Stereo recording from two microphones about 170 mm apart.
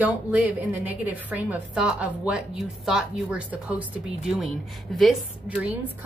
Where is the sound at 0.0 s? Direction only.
10° right (ahead or behind).